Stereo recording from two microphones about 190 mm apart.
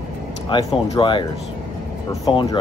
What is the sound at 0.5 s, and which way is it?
Speech, 25° left (ahead or behind).